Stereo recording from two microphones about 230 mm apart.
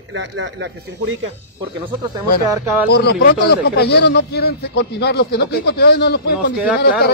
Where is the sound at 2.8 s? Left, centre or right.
Left.